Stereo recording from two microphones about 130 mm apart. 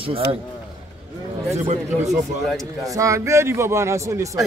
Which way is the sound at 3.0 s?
25° right (ahead or behind).